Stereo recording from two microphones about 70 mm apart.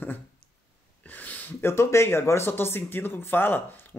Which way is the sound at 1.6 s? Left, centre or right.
Left.